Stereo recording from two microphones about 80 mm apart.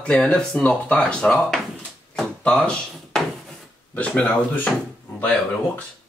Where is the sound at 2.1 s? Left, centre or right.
Centre.